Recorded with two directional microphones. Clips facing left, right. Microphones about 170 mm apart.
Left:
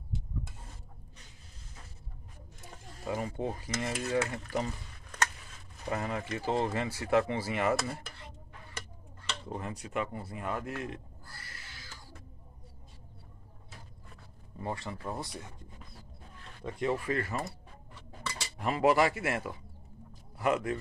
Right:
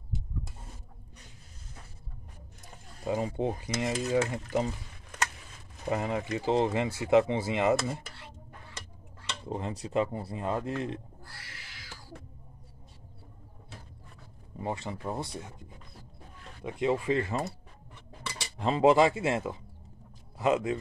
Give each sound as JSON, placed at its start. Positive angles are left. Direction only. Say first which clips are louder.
{"t": 3.1, "sound": "speech", "louder": "right 4 dB", "side_deg": -20}
{"t": 5.9, "sound": "speech", "louder": "right 4 dB", "side_deg": -20}
{"t": 9.5, "sound": "speech", "louder": "right 6 dB", "side_deg": -20}
{"t": 11.2, "sound": "owl", "louder": "right 1 dB", "side_deg": -75}
{"t": 14.6, "sound": "speech", "louder": "right 3 dB", "side_deg": -20}
{"t": 16.6, "sound": "speech", "louder": "right 4 dB", "side_deg": -20}
{"t": 18.6, "sound": "speech", "louder": "right 4 dB", "side_deg": -25}